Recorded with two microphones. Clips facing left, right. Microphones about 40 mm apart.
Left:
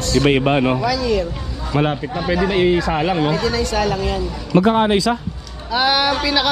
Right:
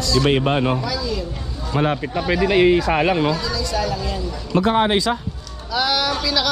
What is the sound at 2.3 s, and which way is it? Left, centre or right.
Speech, right.